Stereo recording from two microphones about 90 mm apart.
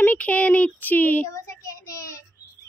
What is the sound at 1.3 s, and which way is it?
Speech, 35° left (ahead or behind).